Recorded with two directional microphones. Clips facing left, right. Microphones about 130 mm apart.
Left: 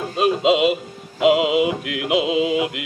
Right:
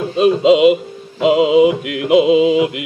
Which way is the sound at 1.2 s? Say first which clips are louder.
Right 5 dB; 30° right (ahead or behind).